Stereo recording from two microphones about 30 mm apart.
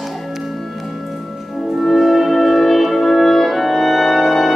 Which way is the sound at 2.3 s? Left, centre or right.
Centre.